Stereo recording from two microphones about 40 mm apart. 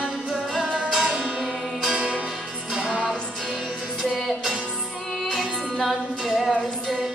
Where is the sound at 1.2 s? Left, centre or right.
Centre.